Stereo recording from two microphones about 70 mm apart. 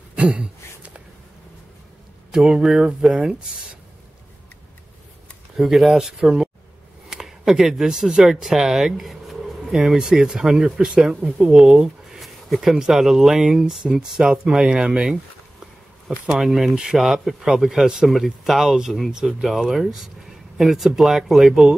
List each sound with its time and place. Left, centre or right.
0.1 s a sound: centre
2.3 s speech: centre
5.6 s speech: centre
16.3 s speech: centre